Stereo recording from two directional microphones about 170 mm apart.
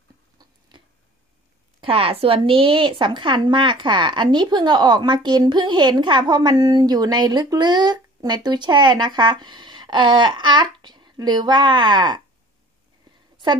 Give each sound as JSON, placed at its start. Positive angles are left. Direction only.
{"t": 0.4, "sound": "chewing", "side_deg": -25}
{"t": 1.8, "sound": "a woman's voice", "side_deg": -35}